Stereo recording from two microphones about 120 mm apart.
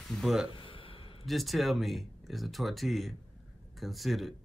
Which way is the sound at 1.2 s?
Centre (ahead or behind).